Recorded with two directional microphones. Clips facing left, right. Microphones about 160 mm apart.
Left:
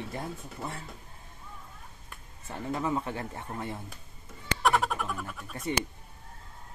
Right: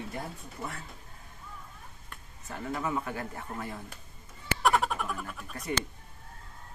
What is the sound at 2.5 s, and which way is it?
Speech, 25° left (ahead or behind).